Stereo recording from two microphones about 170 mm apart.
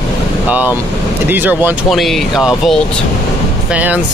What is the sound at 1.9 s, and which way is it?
Speech, centre (ahead or behind).